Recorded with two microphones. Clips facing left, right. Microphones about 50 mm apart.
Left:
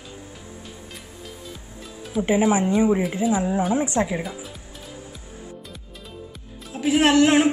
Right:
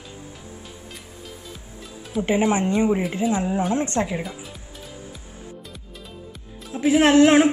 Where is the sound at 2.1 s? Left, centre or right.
Centre.